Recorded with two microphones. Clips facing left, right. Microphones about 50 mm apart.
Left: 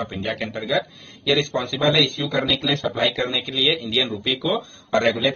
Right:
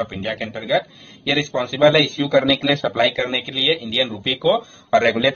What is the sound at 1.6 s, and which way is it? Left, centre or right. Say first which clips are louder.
Speech: right 5 dB; right.